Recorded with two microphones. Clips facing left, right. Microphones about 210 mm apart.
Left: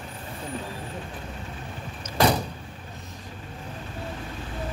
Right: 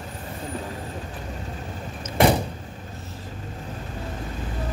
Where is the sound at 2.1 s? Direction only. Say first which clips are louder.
Right 3 dB; 25° right (ahead or behind).